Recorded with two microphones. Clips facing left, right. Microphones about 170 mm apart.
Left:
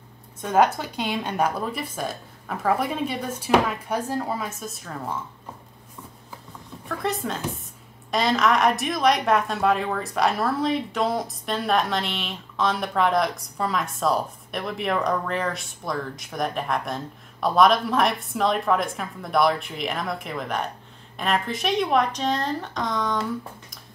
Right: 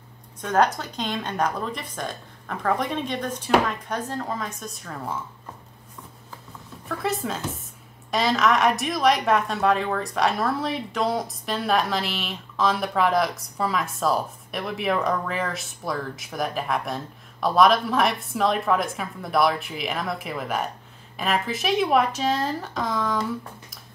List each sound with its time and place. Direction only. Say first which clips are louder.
0.4 s speech: left 1 dB; 10° left (ahead or behind)
6.9 s speech: even; 5° right (ahead or behind)